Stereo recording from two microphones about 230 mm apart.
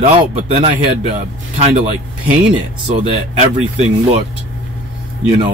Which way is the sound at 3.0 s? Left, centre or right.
Right.